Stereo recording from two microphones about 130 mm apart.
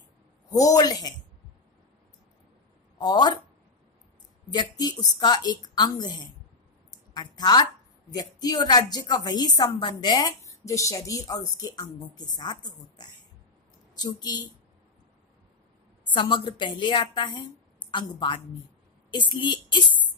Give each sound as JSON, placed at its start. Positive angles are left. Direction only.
{"t": 0.5, "sound": "a woman's voice", "side_deg": 30}
{"t": 3.0, "sound": "a woman's voice", "side_deg": 30}
{"t": 4.5, "sound": "a woman's voice", "side_deg": 30}
{"t": 7.2, "sound": "a woman's voice", "side_deg": 30}
{"t": 16.1, "sound": "a woman's voice", "side_deg": 40}